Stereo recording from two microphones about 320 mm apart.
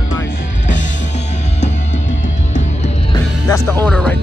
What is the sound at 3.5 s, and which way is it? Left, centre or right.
Speech, centre.